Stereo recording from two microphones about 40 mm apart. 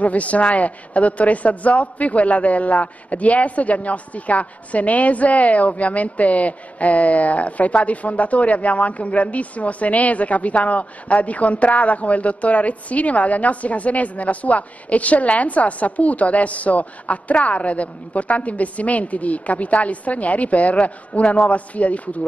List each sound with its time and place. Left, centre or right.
0.0 s a woman's voice: left